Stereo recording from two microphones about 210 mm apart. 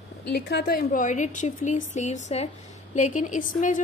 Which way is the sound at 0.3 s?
50° left (ahead or behind).